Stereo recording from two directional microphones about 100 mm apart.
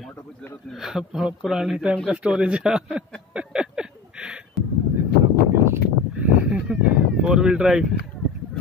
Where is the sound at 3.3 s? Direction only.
10° right (ahead or behind).